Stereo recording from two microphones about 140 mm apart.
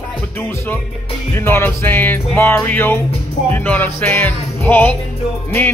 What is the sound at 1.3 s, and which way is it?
A man's voice, 15° left (ahead or behind).